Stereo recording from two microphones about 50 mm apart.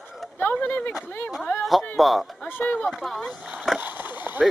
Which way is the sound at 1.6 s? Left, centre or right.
Centre.